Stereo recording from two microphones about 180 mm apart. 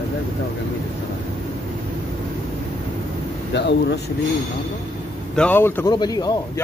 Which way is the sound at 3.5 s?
70° left (ahead or behind).